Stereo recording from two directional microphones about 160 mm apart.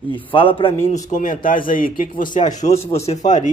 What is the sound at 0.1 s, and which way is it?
Speech, 35° left (ahead or behind).